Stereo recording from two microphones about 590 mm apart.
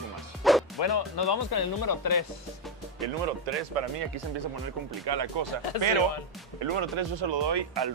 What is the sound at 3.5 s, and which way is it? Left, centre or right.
Speech, right.